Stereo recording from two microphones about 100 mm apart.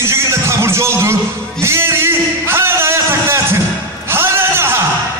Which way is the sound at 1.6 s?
25° right (ahead or behind).